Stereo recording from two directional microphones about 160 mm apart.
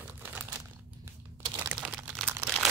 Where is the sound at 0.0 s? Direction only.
15° right (ahead or behind).